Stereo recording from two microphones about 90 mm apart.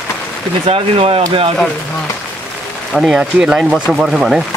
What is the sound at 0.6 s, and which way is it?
Speech, 90° right.